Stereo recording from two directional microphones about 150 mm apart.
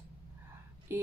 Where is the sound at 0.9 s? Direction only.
15° right (ahead or behind).